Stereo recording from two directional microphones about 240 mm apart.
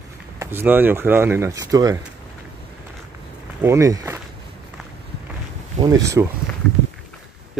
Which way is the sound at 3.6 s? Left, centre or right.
Centre.